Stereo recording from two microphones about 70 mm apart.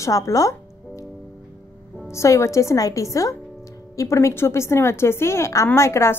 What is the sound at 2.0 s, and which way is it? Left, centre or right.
A woman's voice, left.